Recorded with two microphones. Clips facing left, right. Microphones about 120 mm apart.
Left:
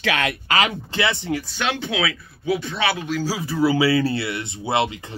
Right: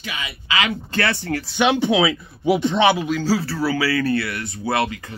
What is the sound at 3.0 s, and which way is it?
Speech, 5° left (ahead or behind).